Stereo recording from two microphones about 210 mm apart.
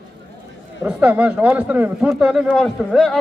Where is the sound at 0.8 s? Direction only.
5° right (ahead or behind).